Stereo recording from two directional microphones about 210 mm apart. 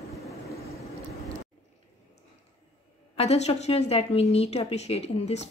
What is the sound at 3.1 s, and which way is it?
Speech, 30° left (ahead or behind).